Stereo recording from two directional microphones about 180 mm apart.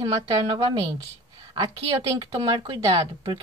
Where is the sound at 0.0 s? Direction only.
25° right (ahead or behind).